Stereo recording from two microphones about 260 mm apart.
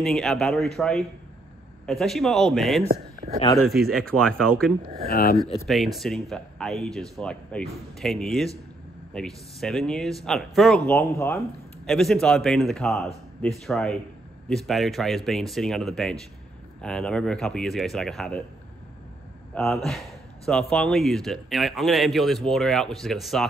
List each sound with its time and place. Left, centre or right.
0.0 s a man's voice: centre
5.1 s speech: left
5.7 s a man's voice: centre
19.5 s a man's voice: centre